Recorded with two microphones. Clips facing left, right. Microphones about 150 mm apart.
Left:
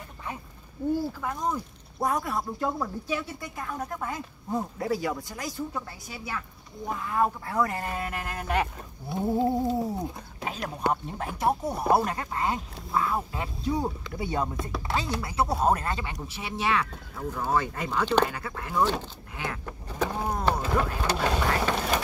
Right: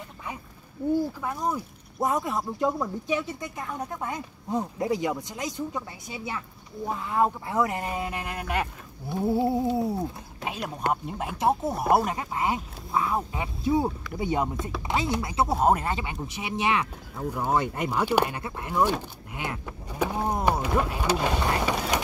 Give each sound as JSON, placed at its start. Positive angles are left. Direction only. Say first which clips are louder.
{"t": 1.2, "sound": "speech", "louder": "right 1 dB", "side_deg": -5}
{"t": 2.0, "sound": "speech", "louder": "right 1 dB", "side_deg": -20}
{"t": 9.1, "sound": "a sound", "louder": "right 1 dB", "side_deg": -5}
{"t": 11.1, "sound": "speech", "louder": "right 2 dB", "side_deg": -15}
{"t": 19.6, "sound": "power windows", "louder": "right 1 dB", "side_deg": -10}
{"t": 20.5, "sound": "speech", "louder": "right 1 dB", "side_deg": -10}